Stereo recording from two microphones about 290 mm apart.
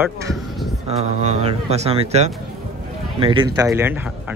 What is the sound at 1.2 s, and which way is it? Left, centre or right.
Speech, right.